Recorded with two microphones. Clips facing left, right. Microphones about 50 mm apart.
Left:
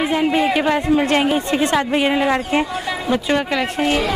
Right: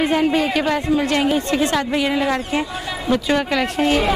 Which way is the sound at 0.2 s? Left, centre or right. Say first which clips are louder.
Left 1 dB; left.